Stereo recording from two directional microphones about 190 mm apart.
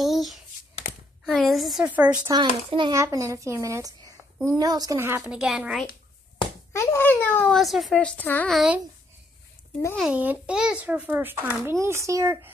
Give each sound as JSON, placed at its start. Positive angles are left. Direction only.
{"t": 0.0, "sound": "a sound", "side_deg": 0}
{"t": 1.2, "sound": "a woman's voice", "side_deg": 0}
{"t": 2.7, "sound": "a child's voice", "side_deg": -20}
{"t": 6.7, "sound": "a child's voice", "side_deg": 15}
{"t": 9.9, "sound": "a child's voice", "side_deg": -5}